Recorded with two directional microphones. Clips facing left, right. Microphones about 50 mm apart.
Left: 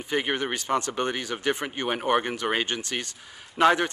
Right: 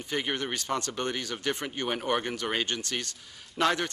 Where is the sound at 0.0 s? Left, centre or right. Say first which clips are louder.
Left 4 dB; centre.